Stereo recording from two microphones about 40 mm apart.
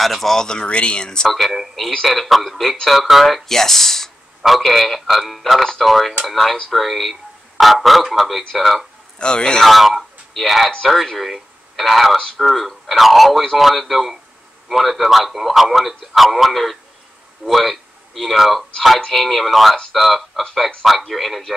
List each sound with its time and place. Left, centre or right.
0.0 s speech: centre
0.5 s speech: left
1.3 s a man's voice: centre
5.6 s a man's voice: centre
9.2 s speech: left
9.7 s a man's voice: centre
18.9 s a man's voice: centre